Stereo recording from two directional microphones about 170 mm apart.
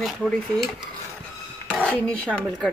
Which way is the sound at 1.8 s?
5° left (ahead or behind).